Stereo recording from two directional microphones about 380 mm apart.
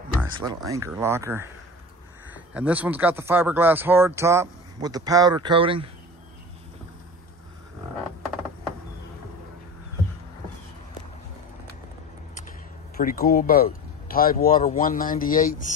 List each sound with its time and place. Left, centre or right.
0.7 s speech: centre
12.4 s speech: left